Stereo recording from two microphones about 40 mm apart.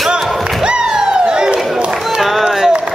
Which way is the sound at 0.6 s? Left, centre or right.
Right.